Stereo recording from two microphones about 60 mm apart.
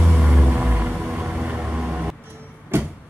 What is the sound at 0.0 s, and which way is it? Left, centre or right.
Music, centre.